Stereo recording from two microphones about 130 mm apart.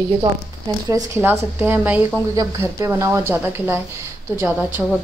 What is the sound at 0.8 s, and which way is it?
Speech, 25° right (ahead or behind).